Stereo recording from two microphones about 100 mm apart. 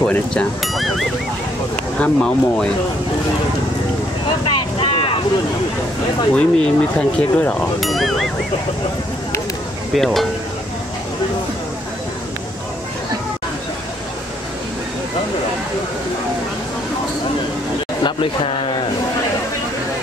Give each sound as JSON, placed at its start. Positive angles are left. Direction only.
{"t": 0.0, "sound": "speech", "side_deg": 10}
{"t": 4.5, "sound": "boat", "side_deg": 60}
{"t": 6.3, "sound": "speech", "side_deg": 10}
{"t": 7.8, "sound": "speech", "side_deg": 0}
{"t": 9.9, "sound": "speech", "side_deg": 5}
{"t": 18.0, "sound": "speech", "side_deg": 65}